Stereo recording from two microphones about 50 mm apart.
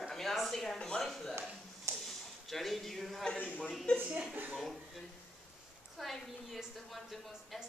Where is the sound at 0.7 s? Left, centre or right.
Centre.